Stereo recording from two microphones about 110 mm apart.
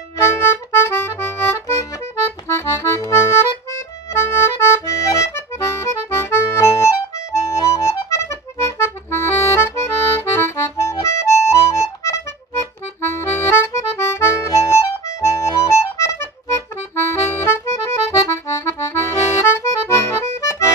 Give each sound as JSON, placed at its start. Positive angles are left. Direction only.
{"t": 0.4, "sound": "accordion", "side_deg": 20}